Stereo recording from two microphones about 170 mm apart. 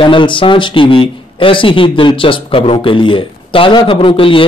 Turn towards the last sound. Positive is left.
turn(degrees=30)  # may be behind; listen again after turning